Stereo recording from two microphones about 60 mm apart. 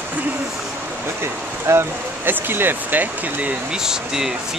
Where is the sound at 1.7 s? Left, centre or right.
Right.